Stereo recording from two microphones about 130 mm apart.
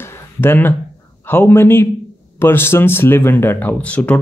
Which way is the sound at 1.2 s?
15° left (ahead or behind).